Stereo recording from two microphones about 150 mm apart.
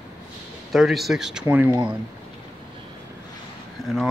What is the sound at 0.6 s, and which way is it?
Speech, centre (ahead or behind).